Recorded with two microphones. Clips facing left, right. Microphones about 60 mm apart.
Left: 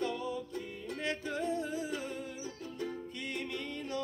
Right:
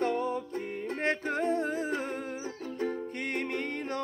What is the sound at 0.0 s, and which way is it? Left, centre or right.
Music, right.